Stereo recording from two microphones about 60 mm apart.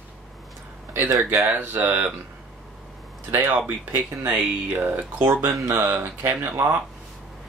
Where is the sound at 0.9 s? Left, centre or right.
Right.